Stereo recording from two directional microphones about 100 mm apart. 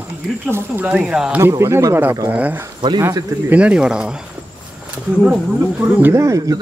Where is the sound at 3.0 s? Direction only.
30° right (ahead or behind).